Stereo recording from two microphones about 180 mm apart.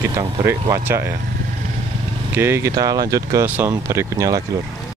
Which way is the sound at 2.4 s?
15° right (ahead or behind).